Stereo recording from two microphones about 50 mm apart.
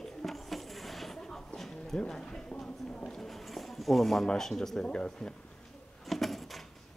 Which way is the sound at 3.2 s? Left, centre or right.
Centre.